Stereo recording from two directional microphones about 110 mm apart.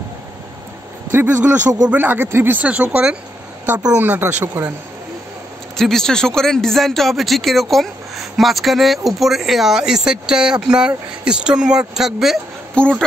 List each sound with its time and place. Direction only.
1.1 s speech: 20° right (ahead or behind)
5.8 s speech: 5° left (ahead or behind)
12.8 s speech: 10° left (ahead or behind)